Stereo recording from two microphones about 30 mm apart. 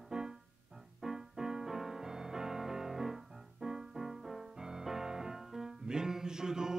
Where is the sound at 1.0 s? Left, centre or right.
Centre.